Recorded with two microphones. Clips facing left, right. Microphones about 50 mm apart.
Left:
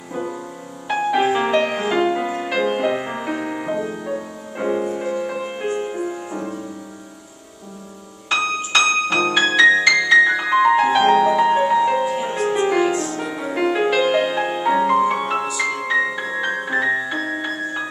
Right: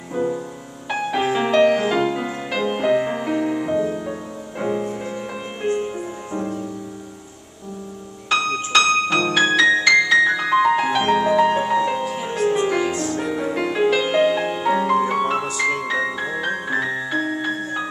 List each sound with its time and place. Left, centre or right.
0.1 s music: centre
8.3 s music: centre